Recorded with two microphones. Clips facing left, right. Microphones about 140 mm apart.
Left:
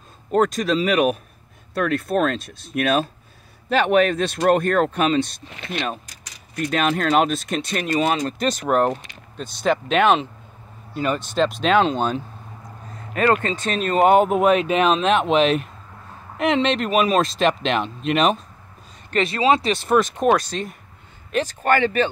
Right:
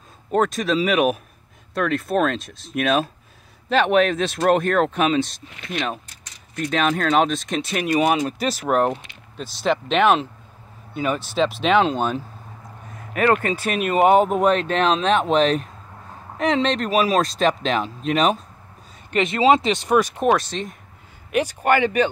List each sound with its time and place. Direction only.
0.3 s speech: centre (ahead or behind)
13.4 s speech: 10° right (ahead or behind)
19.0 s speech: 20° right (ahead or behind)
21.3 s speech: 15° right (ahead or behind)